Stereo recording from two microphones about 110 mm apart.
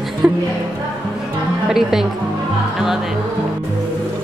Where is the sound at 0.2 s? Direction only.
10° right (ahead or behind).